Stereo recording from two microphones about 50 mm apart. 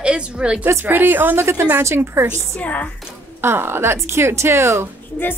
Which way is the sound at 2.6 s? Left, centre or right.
Left.